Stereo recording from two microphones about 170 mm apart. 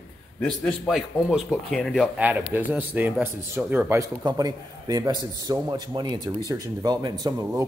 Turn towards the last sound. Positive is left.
turn(degrees=-25)  # may be behind; listen again after turning